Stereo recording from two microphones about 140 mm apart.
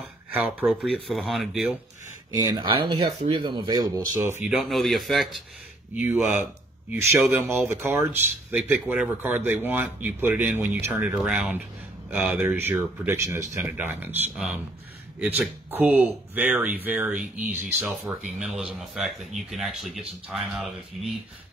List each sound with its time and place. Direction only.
0.3 s speech: 10° right (ahead or behind)
2.4 s speech: 30° right (ahead or behind)
4.5 s speech: centre (ahead or behind)
5.9 s speech: 10° right (ahead or behind)
14.3 s speech: 5° right (ahead or behind)